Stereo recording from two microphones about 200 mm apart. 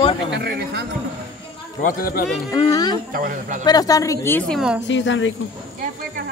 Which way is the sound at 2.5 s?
20° left (ahead or behind).